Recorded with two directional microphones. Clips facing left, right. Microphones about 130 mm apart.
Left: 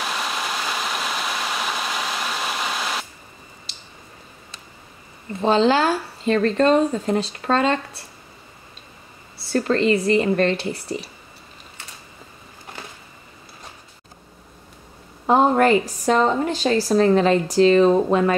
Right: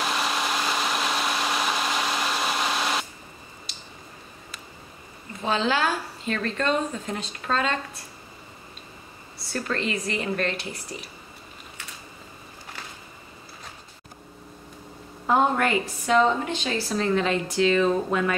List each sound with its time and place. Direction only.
0.0 s a sound: centre (ahead or behind)
5.4 s speech: 30° left (ahead or behind)
9.5 s speech: 30° left (ahead or behind)
15.2 s speech: 30° left (ahead or behind)